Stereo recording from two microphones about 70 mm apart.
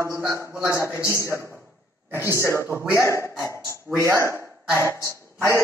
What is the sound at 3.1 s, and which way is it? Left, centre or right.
Speech, left.